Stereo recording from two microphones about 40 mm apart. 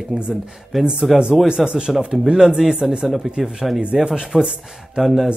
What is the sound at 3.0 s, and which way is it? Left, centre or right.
Speech, centre.